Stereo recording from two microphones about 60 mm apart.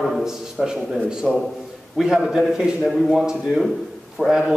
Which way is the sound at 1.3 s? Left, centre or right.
Centre.